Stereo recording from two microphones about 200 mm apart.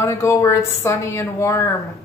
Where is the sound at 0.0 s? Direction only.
15° left (ahead or behind).